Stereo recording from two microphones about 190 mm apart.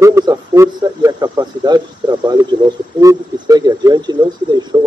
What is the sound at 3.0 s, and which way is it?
Speech, 20° right (ahead or behind).